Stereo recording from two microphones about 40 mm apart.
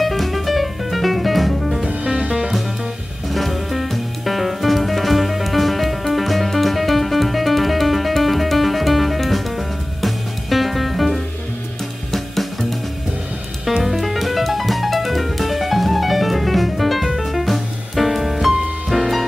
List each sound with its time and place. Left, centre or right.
0.0 s music: centre
2.0 s music: centre
3.3 s music: centre
13.8 s music: centre